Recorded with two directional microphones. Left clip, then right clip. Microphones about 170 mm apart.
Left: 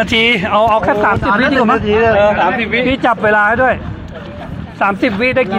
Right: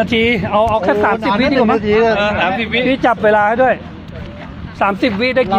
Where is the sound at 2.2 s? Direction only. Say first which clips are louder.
Left 4 dB; 65° right (ahead or behind).